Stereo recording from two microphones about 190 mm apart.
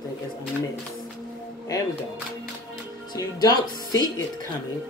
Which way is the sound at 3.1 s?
20° left (ahead or behind).